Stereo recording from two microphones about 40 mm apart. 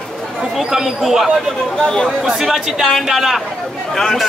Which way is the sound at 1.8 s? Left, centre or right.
Centre.